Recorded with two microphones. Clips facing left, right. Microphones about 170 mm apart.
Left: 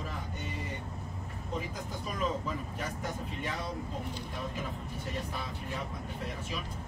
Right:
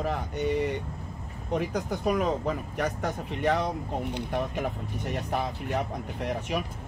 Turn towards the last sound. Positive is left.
turn(degrees=-70)  # may be behind; listen again after turning